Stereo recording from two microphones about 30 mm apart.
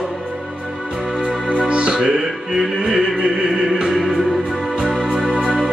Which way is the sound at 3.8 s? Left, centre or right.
Centre.